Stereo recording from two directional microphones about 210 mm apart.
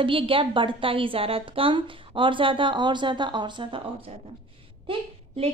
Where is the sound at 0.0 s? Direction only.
25° right (ahead or behind).